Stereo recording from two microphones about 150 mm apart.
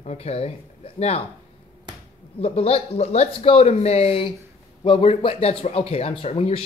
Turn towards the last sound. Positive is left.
turn(degrees=40)  # may be behind; listen again after turning